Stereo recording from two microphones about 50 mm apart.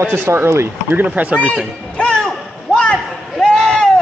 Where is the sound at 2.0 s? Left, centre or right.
Centre.